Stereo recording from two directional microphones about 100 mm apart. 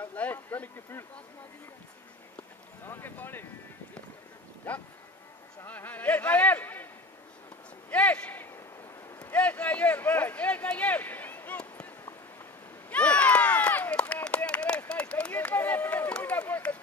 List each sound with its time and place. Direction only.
0.0 s speech: 20° left (ahead or behind)
2.8 s speech: 20° left (ahead or behind)
4.7 s speech: 15° left (ahead or behind)
7.9 s a man's voice: 15° left (ahead or behind)
12.9 s a sound: 15° left (ahead or behind)